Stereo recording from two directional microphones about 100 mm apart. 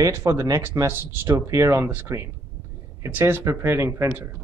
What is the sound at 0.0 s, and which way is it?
Speech, 30° right (ahead or behind).